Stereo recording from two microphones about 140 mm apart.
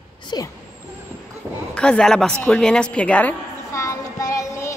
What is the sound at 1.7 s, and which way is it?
A woman's voice, 5° left (ahead or behind).